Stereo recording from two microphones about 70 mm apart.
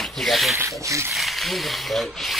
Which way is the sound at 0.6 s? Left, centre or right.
Right.